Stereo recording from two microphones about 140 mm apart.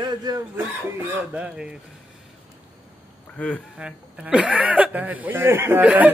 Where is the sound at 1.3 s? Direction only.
5° right (ahead or behind).